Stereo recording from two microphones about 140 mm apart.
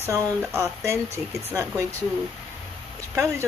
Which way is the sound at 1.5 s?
20° right (ahead or behind).